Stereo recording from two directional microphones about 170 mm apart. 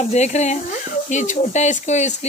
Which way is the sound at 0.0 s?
40° left (ahead or behind).